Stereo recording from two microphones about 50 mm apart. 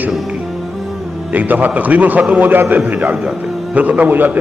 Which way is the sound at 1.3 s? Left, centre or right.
Right.